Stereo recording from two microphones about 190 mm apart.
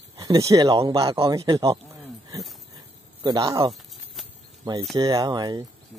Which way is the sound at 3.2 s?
20° right (ahead or behind).